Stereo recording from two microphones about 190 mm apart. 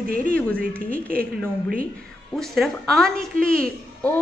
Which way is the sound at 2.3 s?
Centre (ahead or behind).